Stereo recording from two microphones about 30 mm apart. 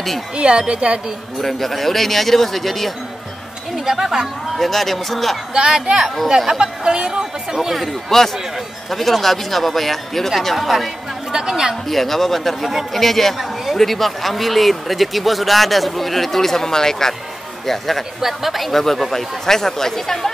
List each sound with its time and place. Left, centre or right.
0.4 s speech: right
1.4 s speech: centre
3.7 s speech: centre
4.6 s speech: centre
6.2 s speech: centre
6.6 s speech: right
8.1 s speech: centre
11.3 s speech: right
11.9 s speech: centre
17.6 s speech: centre